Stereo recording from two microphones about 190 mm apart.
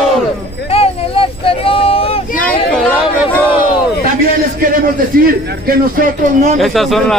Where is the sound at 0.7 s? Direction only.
30° left (ahead or behind).